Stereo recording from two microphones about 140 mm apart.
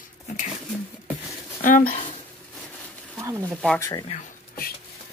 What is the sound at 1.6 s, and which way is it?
Speech, 70° left (ahead or behind).